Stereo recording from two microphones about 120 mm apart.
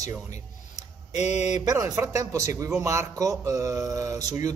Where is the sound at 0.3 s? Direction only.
75° left (ahead or behind).